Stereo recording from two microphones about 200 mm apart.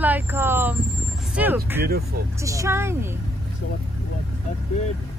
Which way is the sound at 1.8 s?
50° right (ahead or behind).